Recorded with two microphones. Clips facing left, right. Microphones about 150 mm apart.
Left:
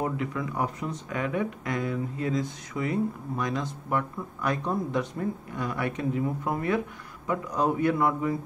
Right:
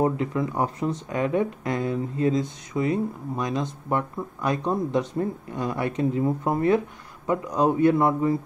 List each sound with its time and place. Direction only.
0.0 s speech: 30° right (ahead or behind)